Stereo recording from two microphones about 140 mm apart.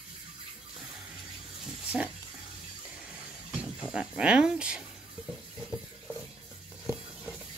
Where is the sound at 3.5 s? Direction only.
5° right (ahead or behind).